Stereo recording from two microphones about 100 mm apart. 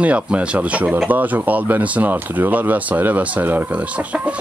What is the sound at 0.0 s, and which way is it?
Speech, 10° right (ahead or behind).